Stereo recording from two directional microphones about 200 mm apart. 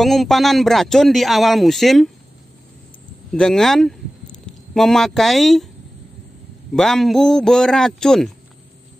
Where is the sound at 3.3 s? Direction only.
5° left (ahead or behind).